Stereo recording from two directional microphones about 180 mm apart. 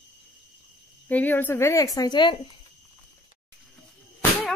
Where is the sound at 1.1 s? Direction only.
10° left (ahead or behind); by 2.4 s 25° left (ahead or behind).